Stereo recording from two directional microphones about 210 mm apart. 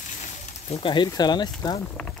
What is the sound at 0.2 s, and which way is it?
Speech, 30° left (ahead or behind).